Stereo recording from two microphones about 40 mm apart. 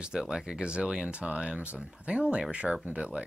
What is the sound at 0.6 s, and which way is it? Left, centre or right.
Speech, right.